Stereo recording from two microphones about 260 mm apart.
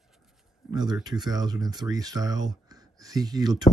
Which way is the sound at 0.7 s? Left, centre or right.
Centre.